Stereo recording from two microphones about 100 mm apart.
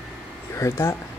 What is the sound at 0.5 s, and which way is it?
Speech, 30° left (ahead or behind).